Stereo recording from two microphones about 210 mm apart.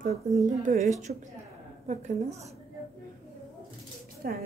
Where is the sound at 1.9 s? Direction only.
35° right (ahead or behind).